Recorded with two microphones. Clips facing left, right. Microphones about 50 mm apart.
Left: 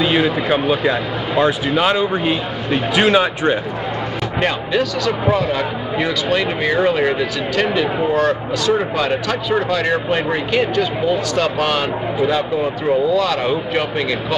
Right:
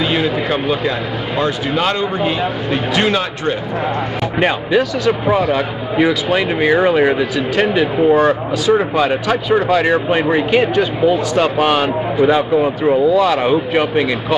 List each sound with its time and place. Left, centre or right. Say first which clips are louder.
0.0 s speech: even; centre
4.4 s speech: right 4 dB; centre